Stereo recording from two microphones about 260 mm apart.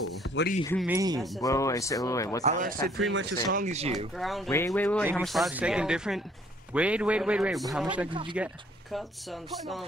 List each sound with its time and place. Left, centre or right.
0.3 s speech: left
0.8 s speech: centre
1.4 s speech: centre
2.4 s speech: right
3.1 s speech: right
3.5 s speech: right
4.2 s speech: centre
8.1 s speech: centre
8.9 s speech: centre